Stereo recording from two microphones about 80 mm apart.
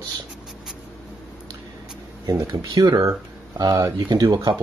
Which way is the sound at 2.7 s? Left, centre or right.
Right.